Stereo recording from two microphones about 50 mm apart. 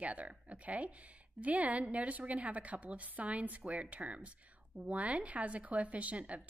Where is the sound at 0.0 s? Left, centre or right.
Right.